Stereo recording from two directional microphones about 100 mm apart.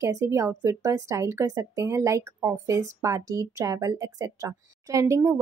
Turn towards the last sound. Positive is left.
turn(degrees=-30)  # may be behind; listen again after turning